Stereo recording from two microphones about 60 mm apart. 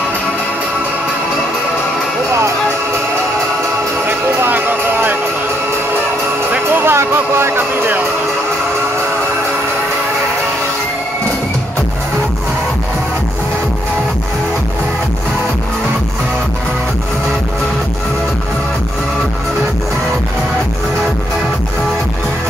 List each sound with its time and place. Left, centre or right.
4.1 s music: right
6.5 s music: right